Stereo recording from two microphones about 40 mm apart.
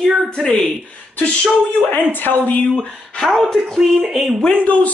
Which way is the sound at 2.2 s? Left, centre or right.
Left.